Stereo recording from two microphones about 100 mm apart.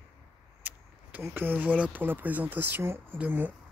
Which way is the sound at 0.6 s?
15° right (ahead or behind).